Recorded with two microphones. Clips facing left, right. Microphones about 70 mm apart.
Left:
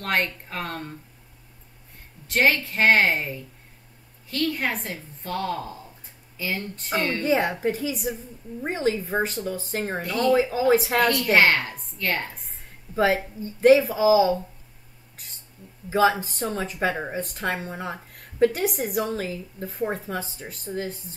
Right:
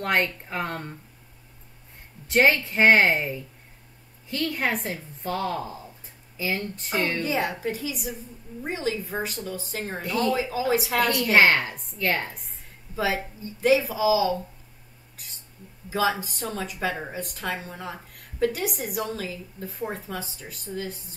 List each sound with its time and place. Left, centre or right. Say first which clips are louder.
0.2 s a woman's voice: right 1 dB; centre
2.2 s a woman's voice: right 1 dB; centre
4.4 s a woman's voice: left 1 dB; centre
7.2 s speech: left 4 dB; left
11.3 s a woman's voice: right 3 dB; centre
12.9 s speech: left 5 dB; left
15.9 s speech: left 5 dB; left